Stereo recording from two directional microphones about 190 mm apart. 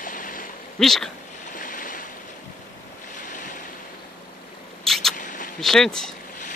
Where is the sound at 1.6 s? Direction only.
45° left (ahead or behind).